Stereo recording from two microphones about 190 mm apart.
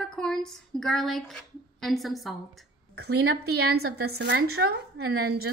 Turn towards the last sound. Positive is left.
turn(degrees=-55)  # may be behind; listen again after turning